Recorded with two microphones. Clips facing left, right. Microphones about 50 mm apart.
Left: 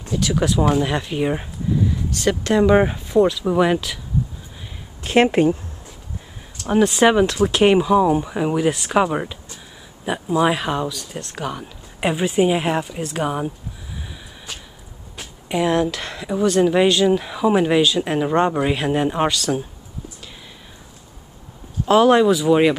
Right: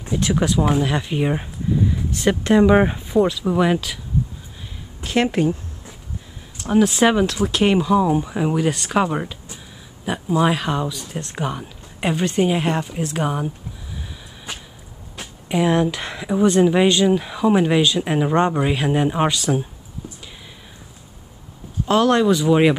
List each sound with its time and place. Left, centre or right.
0.4 s speech: centre
1.9 s speech: centre
5.0 s speech: left
6.8 s speech: centre
10.9 s speech: centre
12.0 s speech: centre
15.1 s speech: centre
21.8 s speech: centre